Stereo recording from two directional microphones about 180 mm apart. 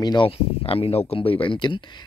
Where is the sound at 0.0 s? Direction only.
25° left (ahead or behind).